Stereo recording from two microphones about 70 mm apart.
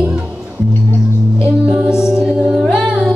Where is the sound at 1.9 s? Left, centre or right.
Centre.